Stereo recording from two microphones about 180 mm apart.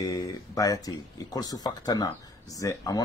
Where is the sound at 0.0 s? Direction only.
20° left (ahead or behind).